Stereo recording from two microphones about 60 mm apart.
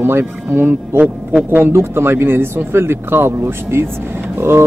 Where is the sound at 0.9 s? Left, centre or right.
Right.